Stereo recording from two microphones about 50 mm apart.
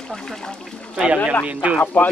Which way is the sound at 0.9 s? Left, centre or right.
Centre.